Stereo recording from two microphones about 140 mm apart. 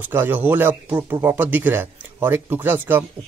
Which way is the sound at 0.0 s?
15° right (ahead or behind).